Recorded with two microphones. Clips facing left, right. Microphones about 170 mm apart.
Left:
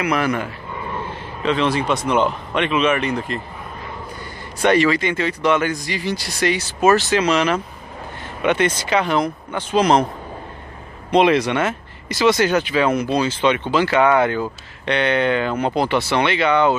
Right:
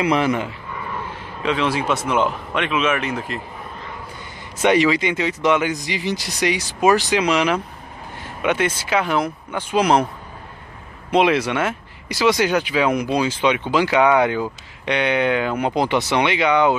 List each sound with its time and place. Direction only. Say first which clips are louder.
0.0 s speech: right 1 dB; 25° right (ahead or behind)
0.7 s vehicle: left 2 dB; 20° left (ahead or behind)
1.4 s speech: left 2 dB; 10° right (ahead or behind)
4.6 s speech: even; 15° right (ahead or behind)
11.1 s speech: left 2 dB; 5° right (ahead or behind)